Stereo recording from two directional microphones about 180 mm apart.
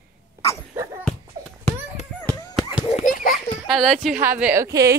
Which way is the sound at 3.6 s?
Centre (ahead or behind).